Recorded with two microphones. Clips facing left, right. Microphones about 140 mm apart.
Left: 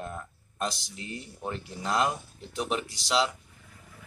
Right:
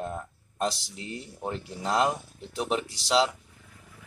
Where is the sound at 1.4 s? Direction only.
25° right (ahead or behind).